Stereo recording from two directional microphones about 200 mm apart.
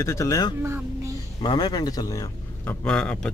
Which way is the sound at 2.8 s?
5° left (ahead or behind).